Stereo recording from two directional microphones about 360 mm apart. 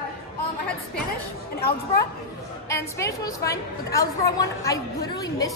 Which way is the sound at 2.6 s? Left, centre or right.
Centre.